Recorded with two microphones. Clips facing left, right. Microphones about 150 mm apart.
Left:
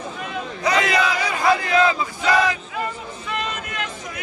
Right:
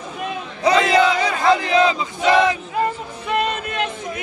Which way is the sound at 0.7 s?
30° right (ahead or behind).